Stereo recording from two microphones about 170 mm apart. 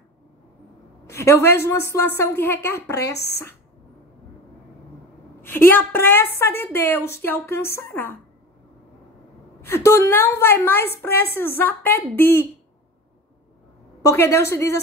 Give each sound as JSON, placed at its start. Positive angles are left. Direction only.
{"t": 1.0, "sound": "a woman's voice", "side_deg": 15}
{"t": 5.4, "sound": "a woman's voice", "side_deg": 15}
{"t": 9.6, "sound": "a woman's voice", "side_deg": 15}
{"t": 14.0, "sound": "a woman's voice", "side_deg": 15}